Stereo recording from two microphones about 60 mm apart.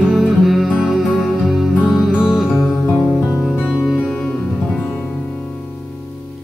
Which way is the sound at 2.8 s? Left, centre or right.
Left.